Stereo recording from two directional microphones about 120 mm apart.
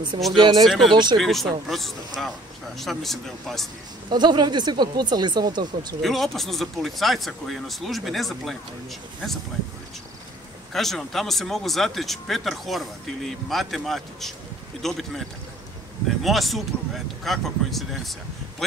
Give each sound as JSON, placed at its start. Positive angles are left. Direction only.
{"t": 0.3, "sound": "speech", "side_deg": -35}
{"t": 0.7, "sound": "speech", "side_deg": 0}
{"t": 4.1, "sound": "speech", "side_deg": -35}
{"t": 6.0, "sound": "speech", "side_deg": 0}
{"t": 10.7, "sound": "speech", "side_deg": 0}